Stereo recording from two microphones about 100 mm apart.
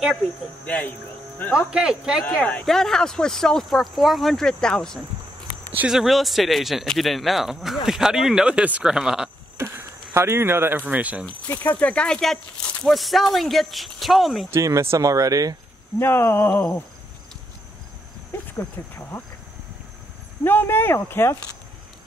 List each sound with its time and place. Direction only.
0.7 s speech: 15° left (ahead or behind)
1.7 s speech: 5° right (ahead or behind)
2.3 s a man's voice: 10° left (ahead or behind); by 9.3 s 5° right (ahead or behind)
9.6 s speech: 25° right (ahead or behind)
11.2 s a man's voice: 20° left (ahead or behind); by 14.5 s centre (ahead or behind)
14.5 s speech: 30° right (ahead or behind)
16.0 s speech: 25° left (ahead or behind)
18.3 s speech: 20° left (ahead or behind)
20.4 s speech: 20° left (ahead or behind)